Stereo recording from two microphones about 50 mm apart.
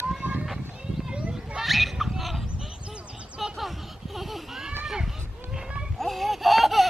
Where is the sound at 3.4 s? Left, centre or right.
Centre.